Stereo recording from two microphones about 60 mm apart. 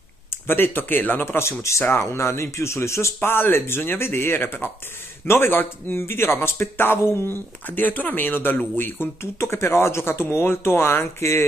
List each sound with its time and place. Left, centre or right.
0.5 s speech: left
1.6 s speech: left
3.2 s speech: left